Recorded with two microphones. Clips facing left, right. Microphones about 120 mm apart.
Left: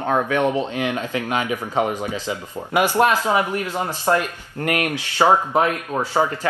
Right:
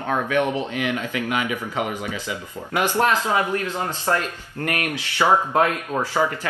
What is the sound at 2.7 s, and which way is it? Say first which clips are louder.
Speech: left 3 dB; 15° left (ahead or behind).